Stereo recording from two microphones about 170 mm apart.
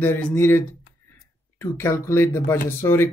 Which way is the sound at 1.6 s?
15° left (ahead or behind).